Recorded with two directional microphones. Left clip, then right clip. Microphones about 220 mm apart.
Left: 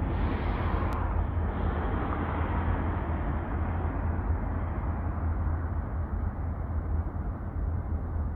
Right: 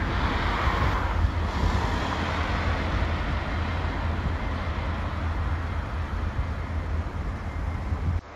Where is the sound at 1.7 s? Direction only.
60° right (ahead or behind).